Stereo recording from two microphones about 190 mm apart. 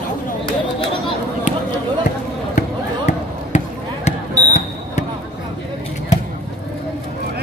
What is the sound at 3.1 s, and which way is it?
Basketball bounce, 35° left (ahead or behind).